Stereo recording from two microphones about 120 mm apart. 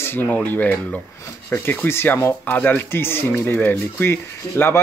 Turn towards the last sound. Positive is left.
turn(degrees=20)  # may be behind; listen again after turning